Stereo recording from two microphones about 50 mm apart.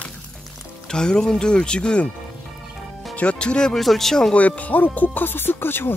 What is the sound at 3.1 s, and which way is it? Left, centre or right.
Speech, left.